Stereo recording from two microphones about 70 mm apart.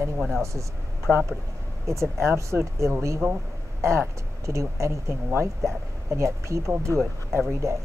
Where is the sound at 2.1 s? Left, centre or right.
Right.